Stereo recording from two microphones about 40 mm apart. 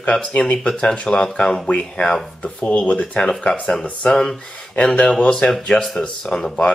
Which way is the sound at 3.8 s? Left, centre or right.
Left.